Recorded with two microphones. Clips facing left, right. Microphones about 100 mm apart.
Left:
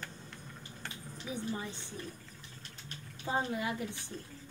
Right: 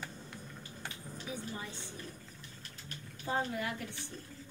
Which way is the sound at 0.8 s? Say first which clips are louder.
Even; 10° right (ahead or behind).